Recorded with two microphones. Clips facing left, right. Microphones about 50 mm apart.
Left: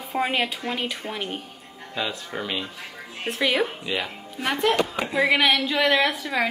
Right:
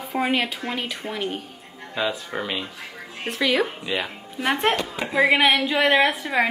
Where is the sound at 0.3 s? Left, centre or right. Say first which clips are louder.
Right 1 dB; centre.